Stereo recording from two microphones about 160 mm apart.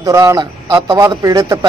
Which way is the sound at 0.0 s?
20° right (ahead or behind).